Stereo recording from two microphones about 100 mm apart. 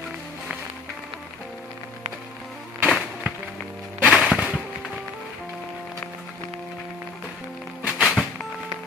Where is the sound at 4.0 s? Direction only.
10° right (ahead or behind).